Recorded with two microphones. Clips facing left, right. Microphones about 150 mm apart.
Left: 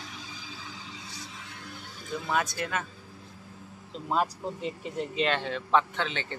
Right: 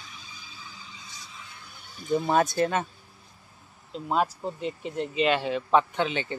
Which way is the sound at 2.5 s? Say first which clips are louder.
Right 8 dB; 30° right (ahead or behind).